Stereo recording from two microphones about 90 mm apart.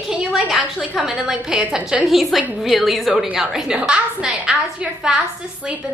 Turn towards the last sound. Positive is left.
turn(degrees=-10)  # may be behind; listen again after turning